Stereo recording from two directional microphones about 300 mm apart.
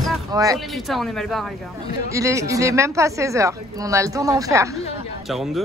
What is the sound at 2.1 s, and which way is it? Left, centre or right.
A woman's voice, centre.